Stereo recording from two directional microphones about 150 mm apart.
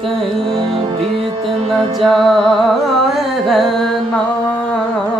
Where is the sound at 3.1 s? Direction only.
Centre (ahead or behind).